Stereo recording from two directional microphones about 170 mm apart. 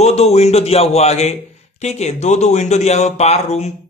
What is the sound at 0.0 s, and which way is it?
A man's voice, 40° left (ahead or behind).